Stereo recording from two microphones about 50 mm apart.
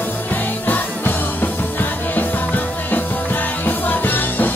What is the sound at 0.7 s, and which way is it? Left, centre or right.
Music, left.